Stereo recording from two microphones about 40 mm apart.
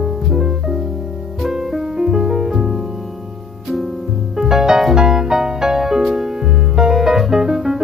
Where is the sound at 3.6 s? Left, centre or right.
Centre.